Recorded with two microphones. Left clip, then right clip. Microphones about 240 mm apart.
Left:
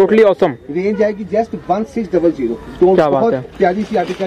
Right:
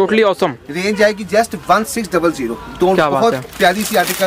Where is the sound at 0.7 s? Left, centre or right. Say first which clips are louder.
Right 3 dB; right.